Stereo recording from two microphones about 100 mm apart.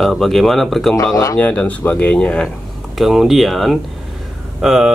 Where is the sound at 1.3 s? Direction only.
15° left (ahead or behind).